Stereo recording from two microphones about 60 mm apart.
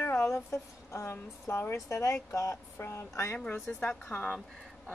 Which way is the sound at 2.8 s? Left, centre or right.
Left.